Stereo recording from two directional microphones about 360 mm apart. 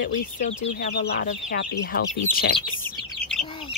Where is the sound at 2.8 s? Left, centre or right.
Centre.